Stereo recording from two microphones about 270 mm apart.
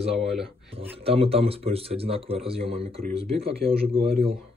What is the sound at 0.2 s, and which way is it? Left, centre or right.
Speech, centre.